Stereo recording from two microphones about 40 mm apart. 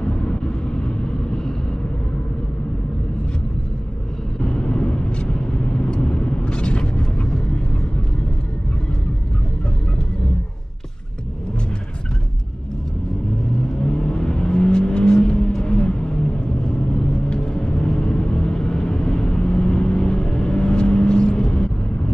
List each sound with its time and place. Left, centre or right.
0.0 s vehicle: left
4.4 s vehicle: left
13.7 s vehicle: centre